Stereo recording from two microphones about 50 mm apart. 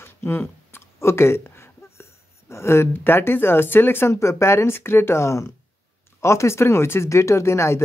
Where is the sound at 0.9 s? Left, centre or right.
Left.